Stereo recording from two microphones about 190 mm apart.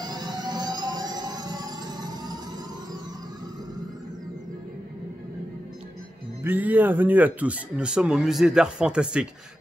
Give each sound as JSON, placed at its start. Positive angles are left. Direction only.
{"t": 0.0, "sound": "music", "side_deg": -20}
{"t": 6.4, "sound": "speech", "side_deg": -10}